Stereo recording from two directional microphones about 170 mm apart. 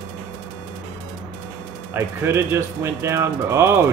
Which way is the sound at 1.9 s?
15° right (ahead or behind).